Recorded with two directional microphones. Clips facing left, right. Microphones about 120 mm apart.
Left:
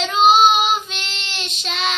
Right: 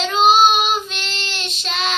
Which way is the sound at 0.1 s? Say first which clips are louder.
Left 1 dB; 15° left (ahead or behind).